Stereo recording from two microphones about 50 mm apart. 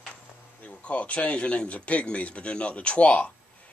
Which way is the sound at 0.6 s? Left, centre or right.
Left.